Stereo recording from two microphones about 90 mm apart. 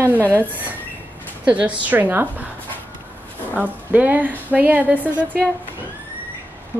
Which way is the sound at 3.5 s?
20° right (ahead or behind).